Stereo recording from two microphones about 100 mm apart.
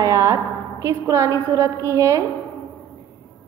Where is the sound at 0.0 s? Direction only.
30° right (ahead or behind).